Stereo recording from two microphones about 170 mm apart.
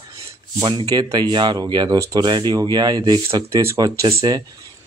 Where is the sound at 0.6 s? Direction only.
25° right (ahead or behind).